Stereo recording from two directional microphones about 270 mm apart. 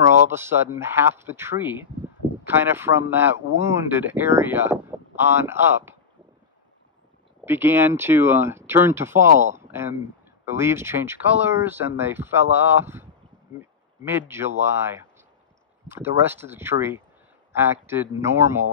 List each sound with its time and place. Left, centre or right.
0.3 s speech: centre
7.4 s speech: centre
9.3 s speech: right
9.6 s speech: centre